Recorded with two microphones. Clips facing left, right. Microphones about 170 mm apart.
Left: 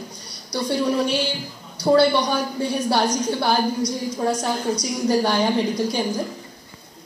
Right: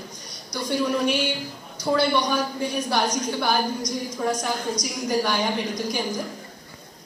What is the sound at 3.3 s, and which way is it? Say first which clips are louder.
A woman's voice: left 3 dB; 30° left (ahead or behind).